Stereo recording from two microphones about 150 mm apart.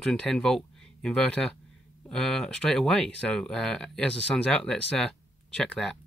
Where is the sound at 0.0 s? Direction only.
5° left (ahead or behind).